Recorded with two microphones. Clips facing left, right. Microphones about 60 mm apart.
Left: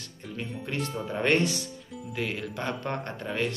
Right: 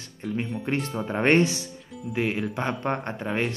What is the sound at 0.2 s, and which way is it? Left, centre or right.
Speech, centre.